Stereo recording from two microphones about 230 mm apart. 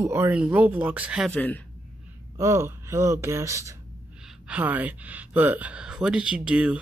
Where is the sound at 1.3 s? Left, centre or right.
Centre.